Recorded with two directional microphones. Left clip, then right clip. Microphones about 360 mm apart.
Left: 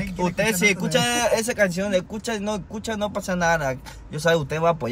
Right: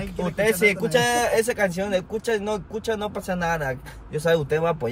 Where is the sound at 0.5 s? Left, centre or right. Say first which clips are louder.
Right 3 dB; centre.